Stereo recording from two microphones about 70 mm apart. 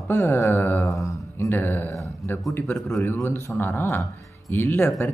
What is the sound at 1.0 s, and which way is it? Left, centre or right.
Speech, left.